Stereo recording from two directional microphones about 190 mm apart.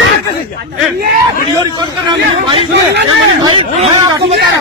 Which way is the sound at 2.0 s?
25° right (ahead or behind).